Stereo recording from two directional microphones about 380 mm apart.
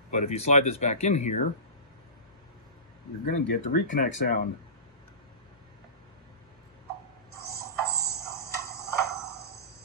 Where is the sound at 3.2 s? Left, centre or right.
Left.